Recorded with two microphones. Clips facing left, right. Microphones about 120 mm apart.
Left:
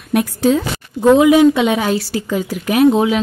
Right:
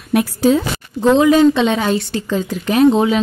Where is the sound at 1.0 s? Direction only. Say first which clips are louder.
Left 2 dB; 10° left (ahead or behind).